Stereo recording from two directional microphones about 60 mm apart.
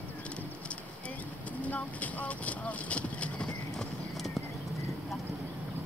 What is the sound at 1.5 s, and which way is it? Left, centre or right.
Clip-clop, left.